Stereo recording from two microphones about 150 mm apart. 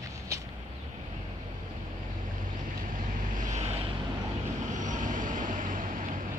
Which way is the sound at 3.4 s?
50° right (ahead or behind).